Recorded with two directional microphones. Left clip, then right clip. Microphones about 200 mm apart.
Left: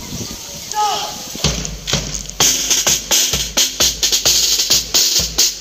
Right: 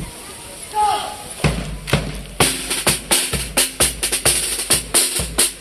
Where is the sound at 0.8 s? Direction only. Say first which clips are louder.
Even; 5° left (ahead or behind).